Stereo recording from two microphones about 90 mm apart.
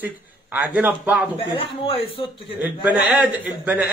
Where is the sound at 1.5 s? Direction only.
80° left.